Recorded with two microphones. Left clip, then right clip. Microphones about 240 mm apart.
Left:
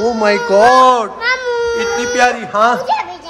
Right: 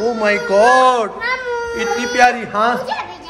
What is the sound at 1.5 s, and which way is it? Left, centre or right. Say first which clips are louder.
Baby cry: left 4 dB; left.